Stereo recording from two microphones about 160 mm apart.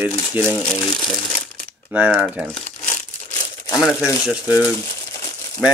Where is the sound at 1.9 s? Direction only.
10° right (ahead or behind).